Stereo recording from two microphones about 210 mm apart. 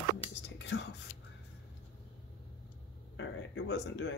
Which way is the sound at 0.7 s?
55° left (ahead or behind).